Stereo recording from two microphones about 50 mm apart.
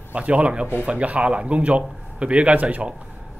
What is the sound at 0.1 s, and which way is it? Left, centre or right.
Speech, right.